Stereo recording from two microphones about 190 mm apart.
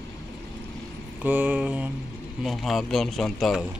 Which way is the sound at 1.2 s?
10° right (ahead or behind).